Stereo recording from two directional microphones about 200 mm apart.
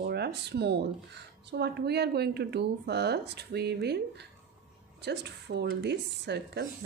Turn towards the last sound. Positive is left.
turn(degrees=-55)  # may be behind; listen again after turning